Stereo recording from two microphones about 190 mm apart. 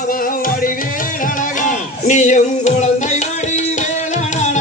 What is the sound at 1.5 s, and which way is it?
Music, 40° left (ahead or behind).